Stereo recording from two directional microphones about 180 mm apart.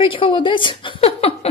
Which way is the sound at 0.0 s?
30° left (ahead or behind).